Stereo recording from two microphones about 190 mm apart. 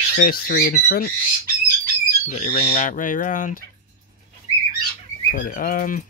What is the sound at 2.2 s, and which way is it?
Speech, 40° left (ahead or behind).